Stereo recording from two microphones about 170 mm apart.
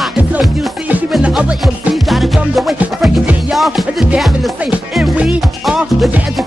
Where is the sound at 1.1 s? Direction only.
Centre (ahead or behind).